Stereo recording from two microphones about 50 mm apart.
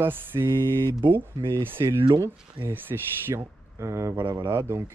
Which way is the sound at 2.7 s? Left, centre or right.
Right.